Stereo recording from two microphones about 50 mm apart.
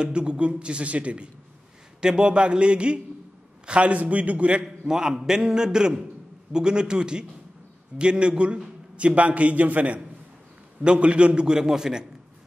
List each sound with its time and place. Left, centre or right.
0.0 s a man's voice: centre
4.8 s a man's voice: centre